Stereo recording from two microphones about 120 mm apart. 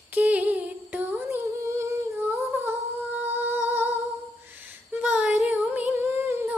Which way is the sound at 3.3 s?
15° right (ahead or behind).